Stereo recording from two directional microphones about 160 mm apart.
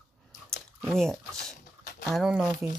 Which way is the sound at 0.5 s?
Centre (ahead or behind).